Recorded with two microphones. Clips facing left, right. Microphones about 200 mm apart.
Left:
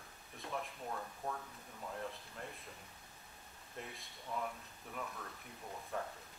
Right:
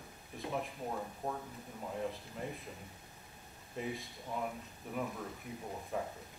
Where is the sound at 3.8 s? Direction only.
Centre (ahead or behind).